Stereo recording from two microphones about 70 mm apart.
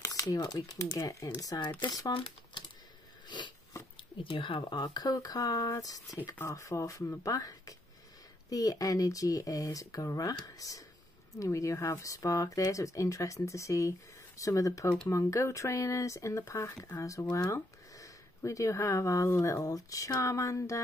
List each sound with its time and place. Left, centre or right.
0.0 s speech: left
1.4 s speech: left
3.3 s a sound: left
4.7 s speech: left
6.4 s speech: left
11.3 s speech: left